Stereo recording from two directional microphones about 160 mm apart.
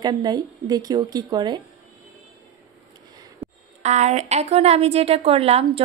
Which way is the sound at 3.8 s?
45° right (ahead or behind).